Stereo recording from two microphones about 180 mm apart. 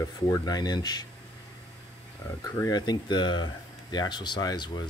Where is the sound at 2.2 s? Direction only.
15° left (ahead or behind).